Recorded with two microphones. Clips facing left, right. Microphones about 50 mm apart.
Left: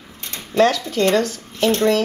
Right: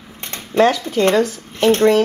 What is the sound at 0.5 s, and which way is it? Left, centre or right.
Speech, centre.